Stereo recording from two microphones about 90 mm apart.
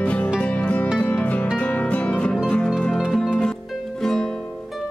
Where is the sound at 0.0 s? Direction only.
15° left (ahead or behind).